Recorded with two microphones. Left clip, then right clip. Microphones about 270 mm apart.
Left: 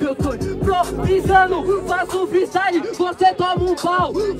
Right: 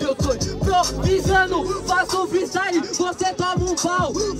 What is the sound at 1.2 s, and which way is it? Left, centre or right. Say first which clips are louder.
Speech: left 5 dB; centre.